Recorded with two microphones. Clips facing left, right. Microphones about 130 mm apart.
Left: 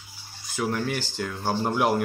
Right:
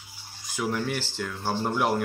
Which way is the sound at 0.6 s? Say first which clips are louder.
Left 1 dB; centre (ahead or behind).